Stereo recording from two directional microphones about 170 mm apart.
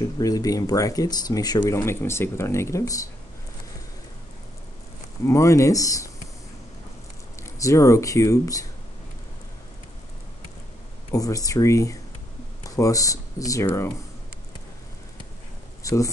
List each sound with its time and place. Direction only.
0.2 s speech: 20° left (ahead or behind)
5.2 s speech: 15° left (ahead or behind)
7.5 s speech: 20° left (ahead or behind)
11.1 s speech: 20° left (ahead or behind)
15.8 s speech: 20° left (ahead or behind)